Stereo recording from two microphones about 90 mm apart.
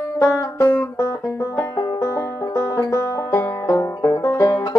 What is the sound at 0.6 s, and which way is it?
Music, 25° left (ahead or behind).